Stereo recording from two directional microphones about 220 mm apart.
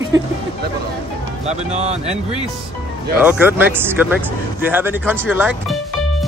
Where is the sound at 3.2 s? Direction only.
5° right (ahead or behind).